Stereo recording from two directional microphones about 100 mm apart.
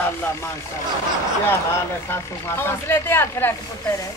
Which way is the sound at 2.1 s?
25° left (ahead or behind).